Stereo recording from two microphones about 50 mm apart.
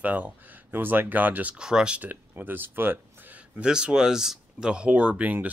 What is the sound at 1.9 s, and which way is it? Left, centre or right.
Speech, right.